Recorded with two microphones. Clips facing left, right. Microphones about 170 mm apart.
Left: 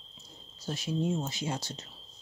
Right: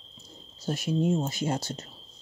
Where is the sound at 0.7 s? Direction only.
55° right (ahead or behind).